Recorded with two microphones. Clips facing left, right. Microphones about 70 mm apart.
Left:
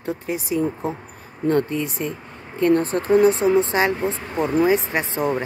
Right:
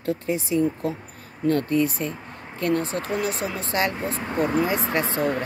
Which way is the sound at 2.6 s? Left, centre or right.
Left.